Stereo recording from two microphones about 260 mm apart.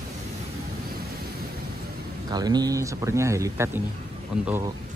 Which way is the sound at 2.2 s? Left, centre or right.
Centre.